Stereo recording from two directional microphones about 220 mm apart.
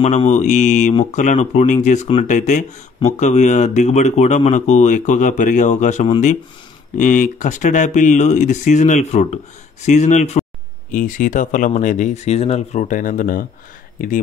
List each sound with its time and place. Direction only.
0.0 s speech: 30° left (ahead or behind)